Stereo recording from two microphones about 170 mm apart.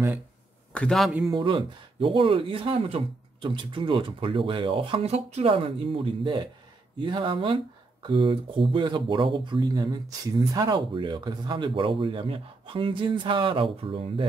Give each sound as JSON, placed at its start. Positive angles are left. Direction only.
{"t": 0.7, "sound": "a man's voice", "side_deg": 0}
{"t": 1.3, "sound": "speech", "side_deg": -30}